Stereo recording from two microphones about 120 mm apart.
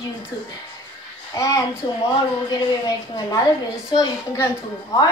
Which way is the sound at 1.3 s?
30° left (ahead or behind).